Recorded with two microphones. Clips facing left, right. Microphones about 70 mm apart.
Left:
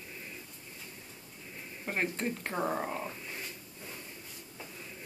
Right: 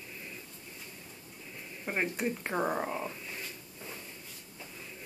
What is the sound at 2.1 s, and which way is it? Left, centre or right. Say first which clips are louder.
Speech: right 2 dB; centre.